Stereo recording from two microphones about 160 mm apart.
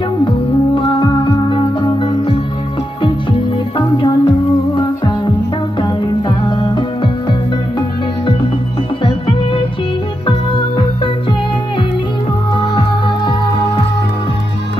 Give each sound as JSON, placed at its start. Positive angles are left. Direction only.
{"t": 1.5, "sound": "music", "side_deg": 30}
{"t": 3.7, "sound": "music", "side_deg": 30}
{"t": 5.8, "sound": "music", "side_deg": 30}
{"t": 10.2, "sound": "music", "side_deg": 35}